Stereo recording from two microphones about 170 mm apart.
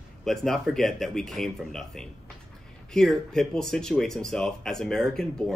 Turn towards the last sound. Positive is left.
turn(degrees=5)  # may be behind; listen again after turning